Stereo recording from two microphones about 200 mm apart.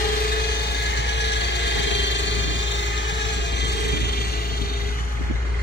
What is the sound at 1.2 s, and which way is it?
Vehicle, 60° left (ahead or behind).